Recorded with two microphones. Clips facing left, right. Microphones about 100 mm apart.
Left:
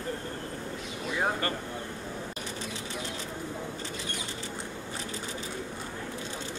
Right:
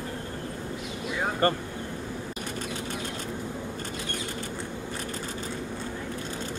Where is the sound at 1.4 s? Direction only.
40° right (ahead or behind).